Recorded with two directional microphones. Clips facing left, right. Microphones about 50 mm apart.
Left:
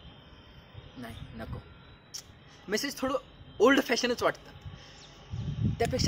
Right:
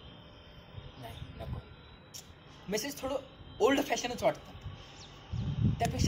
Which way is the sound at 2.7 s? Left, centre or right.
Left.